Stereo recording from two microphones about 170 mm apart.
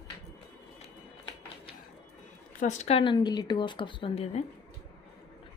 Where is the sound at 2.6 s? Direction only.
45° left (ahead or behind).